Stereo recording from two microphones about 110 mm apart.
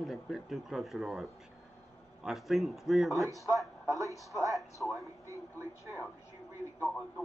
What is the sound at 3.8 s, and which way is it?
Speech, 30° right (ahead or behind).